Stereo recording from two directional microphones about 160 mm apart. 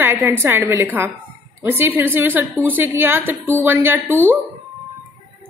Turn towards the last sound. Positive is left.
turn(degrees=-15)  # may be behind; listen again after turning